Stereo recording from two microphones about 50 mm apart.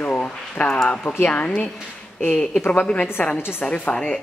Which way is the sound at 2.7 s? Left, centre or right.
Left.